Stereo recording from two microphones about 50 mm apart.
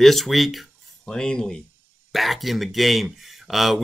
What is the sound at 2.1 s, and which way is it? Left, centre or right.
Speech, centre.